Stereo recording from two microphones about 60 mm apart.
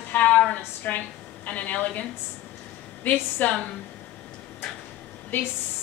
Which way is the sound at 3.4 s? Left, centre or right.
Left.